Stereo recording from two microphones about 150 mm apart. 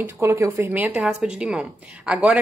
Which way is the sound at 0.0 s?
15° right (ahead or behind).